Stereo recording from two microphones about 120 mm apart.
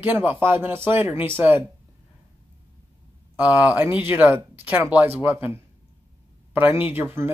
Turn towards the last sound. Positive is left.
turn(degrees=-15)  # may be behind; listen again after turning